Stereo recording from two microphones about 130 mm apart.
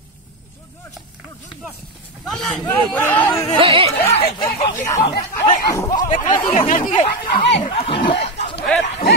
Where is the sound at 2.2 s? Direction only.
5° left (ahead or behind).